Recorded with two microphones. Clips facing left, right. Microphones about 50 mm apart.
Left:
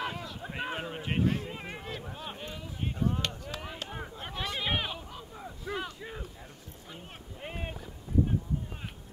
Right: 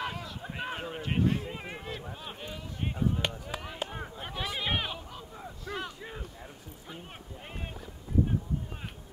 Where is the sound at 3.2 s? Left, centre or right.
Centre.